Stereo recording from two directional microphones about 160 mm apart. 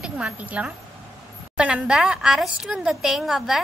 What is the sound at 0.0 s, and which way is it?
A woman's voice, 5° right (ahead or behind).